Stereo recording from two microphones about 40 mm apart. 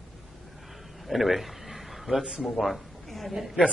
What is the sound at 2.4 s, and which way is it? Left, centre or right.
Speech, centre.